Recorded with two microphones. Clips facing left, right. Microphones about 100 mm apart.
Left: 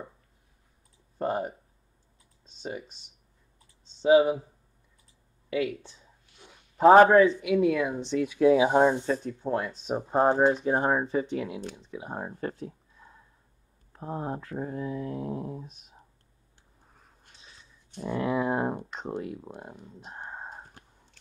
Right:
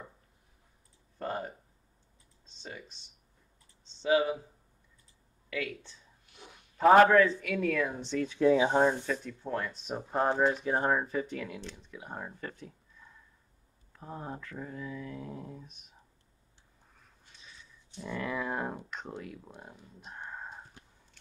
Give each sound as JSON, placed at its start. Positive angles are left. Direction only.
{"t": 1.2, "sound": "speech", "side_deg": 20}
{"t": 2.6, "sound": "speech", "side_deg": 20}
{"t": 4.0, "sound": "speech", "side_deg": 25}
{"t": 5.5, "sound": "speech", "side_deg": 20}
{"t": 6.8, "sound": "speech", "side_deg": 30}
{"t": 9.0, "sound": "speech", "side_deg": 35}
{"t": 17.3, "sound": "a sound", "side_deg": 35}
{"t": 17.9, "sound": "speech", "side_deg": 45}
{"t": 18.3, "sound": "speech", "side_deg": 25}
{"t": 20.4, "sound": "a sound", "side_deg": 45}